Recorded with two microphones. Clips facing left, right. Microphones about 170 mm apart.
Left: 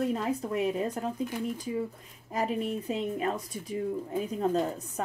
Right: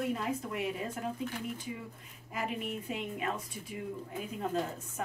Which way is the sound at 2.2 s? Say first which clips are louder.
Left 7 dB; 35° left (ahead or behind).